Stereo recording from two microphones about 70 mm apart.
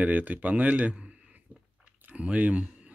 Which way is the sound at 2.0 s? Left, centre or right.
Centre.